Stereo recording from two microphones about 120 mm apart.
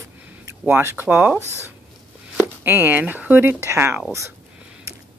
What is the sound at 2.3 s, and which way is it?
Speech, 15° right (ahead or behind).